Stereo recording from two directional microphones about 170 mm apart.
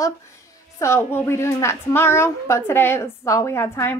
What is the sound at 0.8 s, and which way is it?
A woman's voice, 15° left (ahead or behind).